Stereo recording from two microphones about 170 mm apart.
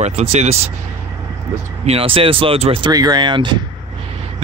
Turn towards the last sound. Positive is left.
turn(degrees=-25)  # may be behind; listen again after turning